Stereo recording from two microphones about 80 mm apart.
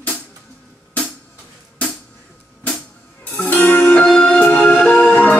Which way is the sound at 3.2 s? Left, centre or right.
Left.